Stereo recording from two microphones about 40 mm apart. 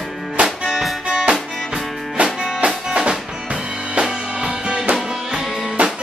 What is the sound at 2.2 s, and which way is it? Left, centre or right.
Music, right.